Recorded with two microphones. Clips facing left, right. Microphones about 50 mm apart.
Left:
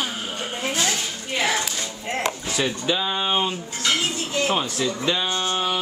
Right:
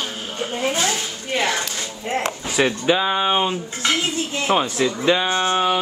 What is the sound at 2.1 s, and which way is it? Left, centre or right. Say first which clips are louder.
Speech: right 4 dB; right.